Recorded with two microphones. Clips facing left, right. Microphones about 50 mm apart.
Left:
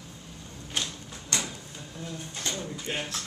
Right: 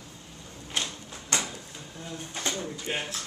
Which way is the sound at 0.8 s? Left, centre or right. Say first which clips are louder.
Right 2 dB; right.